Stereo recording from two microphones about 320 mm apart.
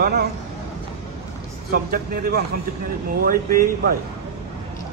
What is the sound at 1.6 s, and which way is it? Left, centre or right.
Speech, right.